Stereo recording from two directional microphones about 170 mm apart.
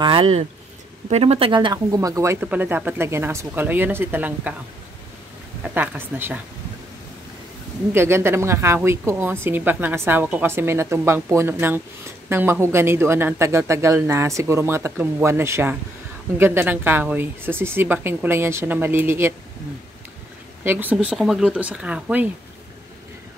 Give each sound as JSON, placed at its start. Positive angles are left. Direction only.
{"t": 0.0, "sound": "a woman's voice", "side_deg": -30}
{"t": 5.6, "sound": "a woman's voice", "side_deg": -10}
{"t": 7.9, "sound": "a woman's voice", "side_deg": -15}
{"t": 20.6, "sound": "a woman's voice", "side_deg": -10}